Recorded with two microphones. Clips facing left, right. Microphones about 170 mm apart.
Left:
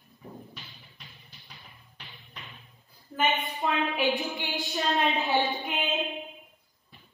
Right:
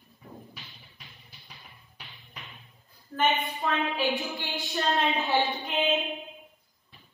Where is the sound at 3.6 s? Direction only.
15° left (ahead or behind).